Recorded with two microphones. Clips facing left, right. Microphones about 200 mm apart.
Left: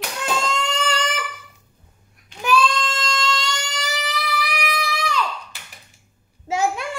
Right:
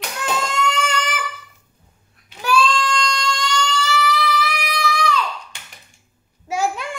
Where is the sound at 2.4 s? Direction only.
20° left (ahead or behind).